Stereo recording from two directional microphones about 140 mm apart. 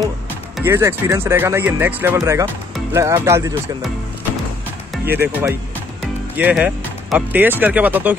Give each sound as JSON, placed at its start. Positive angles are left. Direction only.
{"t": 0.7, "sound": "speech", "side_deg": -20}
{"t": 5.0, "sound": "speech", "side_deg": -15}
{"t": 6.5, "sound": "speech", "side_deg": -5}